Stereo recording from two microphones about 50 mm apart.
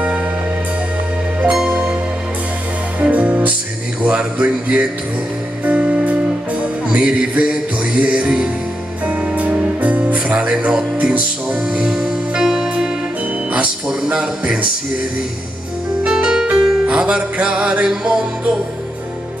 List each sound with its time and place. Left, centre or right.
3.0 s music: right
9.0 s music: right; by 14.2 s centre
16.0 s music: centre